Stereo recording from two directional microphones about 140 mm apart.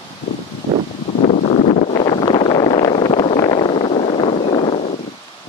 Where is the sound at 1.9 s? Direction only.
35° left (ahead or behind).